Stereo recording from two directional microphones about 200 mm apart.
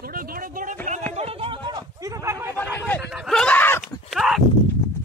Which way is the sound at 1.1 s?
30° right (ahead or behind).